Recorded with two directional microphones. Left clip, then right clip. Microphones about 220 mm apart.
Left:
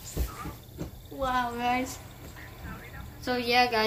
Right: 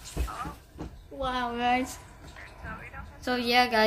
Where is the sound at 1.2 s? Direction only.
20° right (ahead or behind).